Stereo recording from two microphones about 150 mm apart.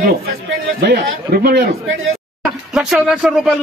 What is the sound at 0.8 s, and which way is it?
Speech, 90° right.